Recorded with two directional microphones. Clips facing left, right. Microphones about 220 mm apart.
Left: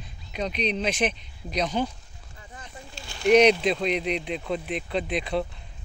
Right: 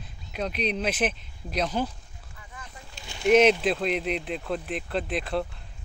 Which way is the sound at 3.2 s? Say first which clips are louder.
Left 1 dB; 5° right (ahead or behind).